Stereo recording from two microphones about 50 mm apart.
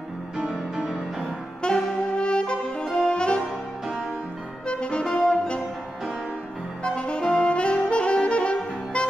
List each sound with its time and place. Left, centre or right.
0.5 s music: centre
1.6 s saxophone: centre
4.6 s music: left
6.8 s saxophone: centre